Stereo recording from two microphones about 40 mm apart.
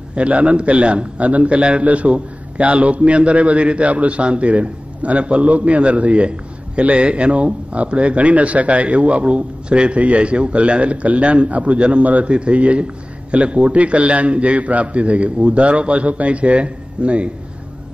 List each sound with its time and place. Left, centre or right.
0.1 s a man's voice: right